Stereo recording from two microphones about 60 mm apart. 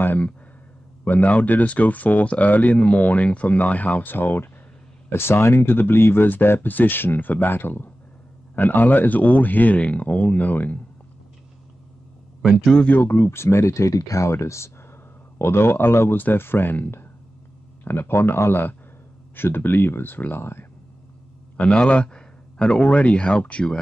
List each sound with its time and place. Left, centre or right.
0.0 s a sound: left
1.0 s speech: left
12.4 s a man's voice: centre
12.9 s speech: left
21.5 s a man's voice: centre